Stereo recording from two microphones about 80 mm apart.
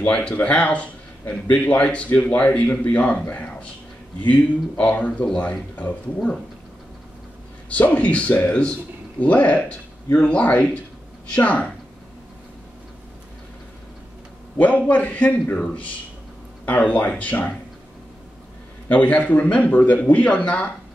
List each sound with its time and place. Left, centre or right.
0.0 s speech: centre
7.7 s speech: centre
14.6 s speech: centre
18.9 s speech: centre